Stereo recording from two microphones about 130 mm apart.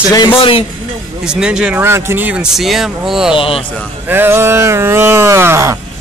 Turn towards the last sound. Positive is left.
turn(degrees=-20)  # may be behind; listen again after turning